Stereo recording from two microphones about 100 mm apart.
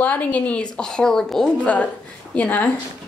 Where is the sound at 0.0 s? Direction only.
15° left (ahead or behind).